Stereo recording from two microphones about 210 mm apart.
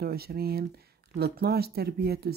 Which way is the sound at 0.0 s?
45° right (ahead or behind).